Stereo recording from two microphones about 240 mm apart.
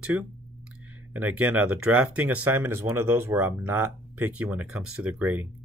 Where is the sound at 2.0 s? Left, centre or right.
Right.